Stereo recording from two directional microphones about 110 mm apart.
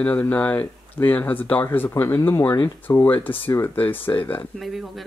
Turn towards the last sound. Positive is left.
turn(degrees=0)  # may be behind; listen again after turning